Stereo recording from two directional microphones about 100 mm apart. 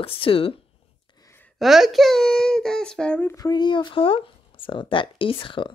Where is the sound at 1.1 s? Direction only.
50° left (ahead or behind).